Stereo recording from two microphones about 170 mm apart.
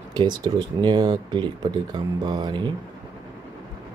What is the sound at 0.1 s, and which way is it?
Speech, 25° right (ahead or behind).